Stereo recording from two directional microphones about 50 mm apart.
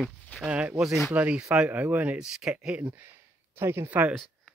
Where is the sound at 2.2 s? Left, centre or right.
Centre.